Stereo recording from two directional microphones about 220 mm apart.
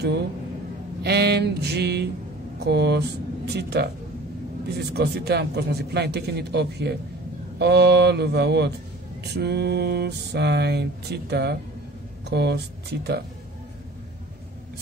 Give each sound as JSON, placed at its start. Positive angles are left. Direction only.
{"t": 1.0, "sound": "a man's voice", "side_deg": -50}